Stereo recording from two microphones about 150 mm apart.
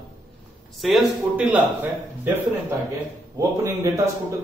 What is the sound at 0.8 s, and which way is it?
Speech, centre (ahead or behind).